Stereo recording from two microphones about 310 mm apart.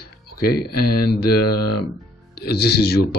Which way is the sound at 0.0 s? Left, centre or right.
Left.